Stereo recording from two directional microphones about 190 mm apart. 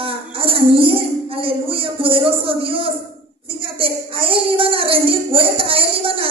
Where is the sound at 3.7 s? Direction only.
30° right (ahead or behind).